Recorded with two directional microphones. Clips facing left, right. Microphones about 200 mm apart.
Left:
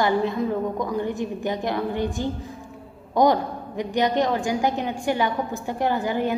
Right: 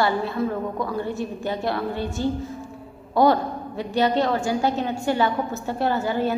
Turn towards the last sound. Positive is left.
turn(degrees=15)  # may be behind; listen again after turning